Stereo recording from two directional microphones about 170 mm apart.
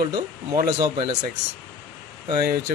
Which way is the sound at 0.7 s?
25° right (ahead or behind).